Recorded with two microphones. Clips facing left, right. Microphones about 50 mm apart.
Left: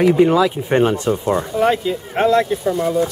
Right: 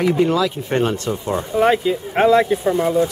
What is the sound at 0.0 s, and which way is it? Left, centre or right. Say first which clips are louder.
Speech: left 4 dB; centre.